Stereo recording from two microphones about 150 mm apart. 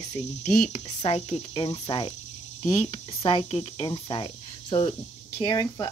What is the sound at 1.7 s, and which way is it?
Speech, 30° left (ahead or behind).